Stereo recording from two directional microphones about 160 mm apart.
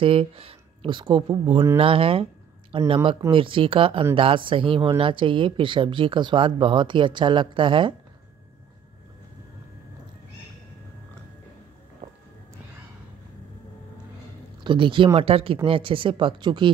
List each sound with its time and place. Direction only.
0.0 s speech: 35° right (ahead or behind)
12.0 s a sound: 55° right (ahead or behind)
14.6 s speech: 30° right (ahead or behind)